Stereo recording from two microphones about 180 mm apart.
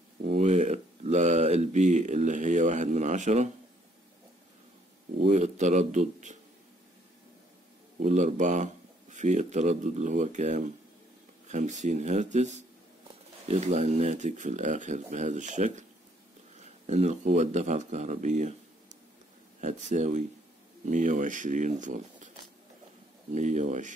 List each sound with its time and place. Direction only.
0.2 s speech: 35° right (ahead or behind)
5.2 s speech: 40° right (ahead or behind)
8.0 s speech: 40° right (ahead or behind)
16.8 s speech: 35° right (ahead or behind)
23.3 s speech: 40° right (ahead or behind)